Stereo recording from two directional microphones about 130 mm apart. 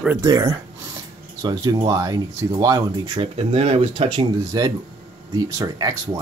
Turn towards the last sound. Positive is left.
turn(degrees=-30)  # may be behind; listen again after turning